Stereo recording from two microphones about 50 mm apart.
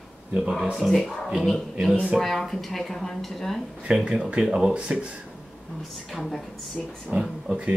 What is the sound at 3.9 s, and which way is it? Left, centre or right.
Speech, centre.